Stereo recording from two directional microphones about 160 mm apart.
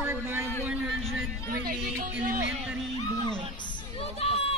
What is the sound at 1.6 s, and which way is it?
Speech, 65° right (ahead or behind).